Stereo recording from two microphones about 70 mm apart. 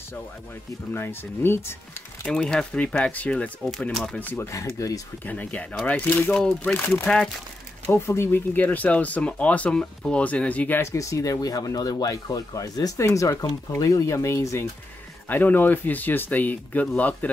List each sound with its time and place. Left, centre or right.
0.9 s speech: left
2.2 s speech: centre
3.9 s speech: centre
4.2 s speech: left
4.5 s speech: left
5.2 s speech: left
7.8 s speech: left
10.8 s speech: left
13.0 s speech: left
13.7 s speech: left
14.0 s speech: left
15.2 s speech: left